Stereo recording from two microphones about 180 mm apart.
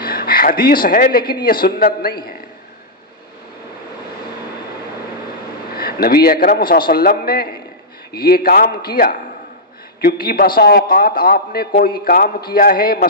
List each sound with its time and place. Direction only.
0.0 s a man's voice: 55° left (ahead or behind)
5.8 s a man's voice: 55° left (ahead or behind)